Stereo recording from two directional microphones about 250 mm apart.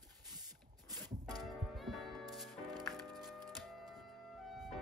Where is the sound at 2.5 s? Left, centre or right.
Centre.